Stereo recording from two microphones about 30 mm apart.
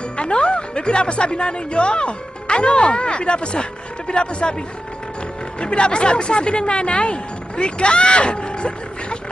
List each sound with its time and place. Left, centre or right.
0.2 s speech: left
5.6 s speech: left